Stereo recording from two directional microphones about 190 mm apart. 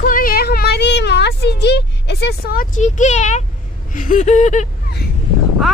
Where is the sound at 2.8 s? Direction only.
40° left (ahead or behind).